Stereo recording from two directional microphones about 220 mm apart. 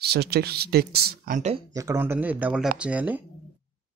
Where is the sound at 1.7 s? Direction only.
15° right (ahead or behind).